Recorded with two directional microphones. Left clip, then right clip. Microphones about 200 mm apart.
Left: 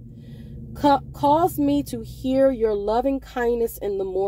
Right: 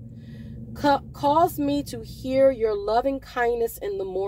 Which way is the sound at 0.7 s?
40° left (ahead or behind).